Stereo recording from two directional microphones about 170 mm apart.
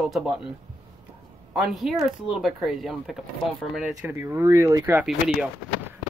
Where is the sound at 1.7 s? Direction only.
Centre (ahead or behind).